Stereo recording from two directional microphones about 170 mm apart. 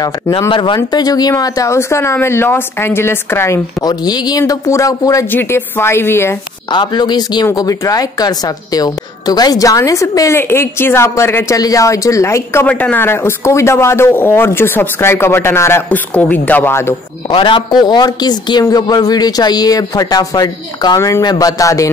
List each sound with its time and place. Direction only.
0.5 s speech: 30° left (ahead or behind)
6.7 s speech: 25° left (ahead or behind)
17.3 s speech: 30° left (ahead or behind)